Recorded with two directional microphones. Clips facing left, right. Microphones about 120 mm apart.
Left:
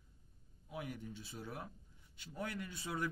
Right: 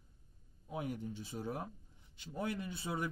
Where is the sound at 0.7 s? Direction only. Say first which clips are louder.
Right 5 dB; 25° right (ahead or behind).